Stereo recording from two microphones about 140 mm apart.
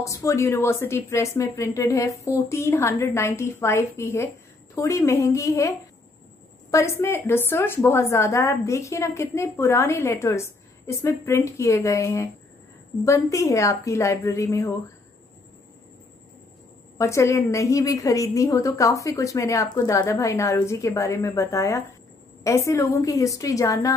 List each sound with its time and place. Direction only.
0.0 s a woman's voice: 20° left (ahead or behind)
6.7 s a woman's voice: 20° left (ahead or behind)
17.0 s a woman's voice: 20° left (ahead or behind)